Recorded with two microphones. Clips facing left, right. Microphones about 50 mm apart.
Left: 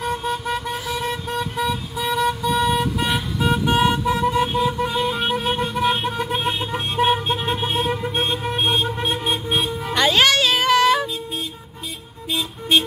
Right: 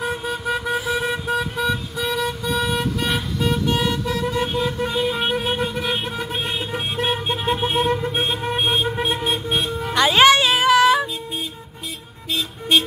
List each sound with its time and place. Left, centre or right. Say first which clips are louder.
0.0 s vehicle: left 1 dB; centre
3.5 s vehicle: left 5 dB; centre
4.4 s vehicle: left 2 dB; centre
10.1 s child singing: right 6 dB; centre
12.3 s vehicle: even; centre